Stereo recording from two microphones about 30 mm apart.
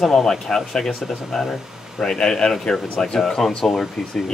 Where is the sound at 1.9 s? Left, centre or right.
Left.